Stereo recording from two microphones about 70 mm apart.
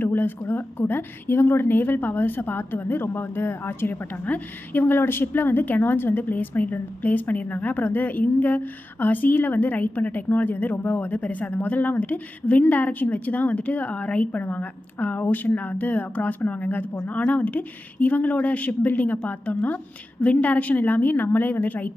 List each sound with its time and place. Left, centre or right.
0.0 s a woman's voice: left